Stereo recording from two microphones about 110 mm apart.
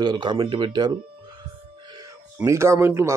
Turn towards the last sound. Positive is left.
turn(degrees=-25)  # may be behind; listen again after turning